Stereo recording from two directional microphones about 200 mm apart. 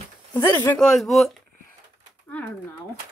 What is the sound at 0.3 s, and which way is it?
Speech, 15° left (ahead or behind).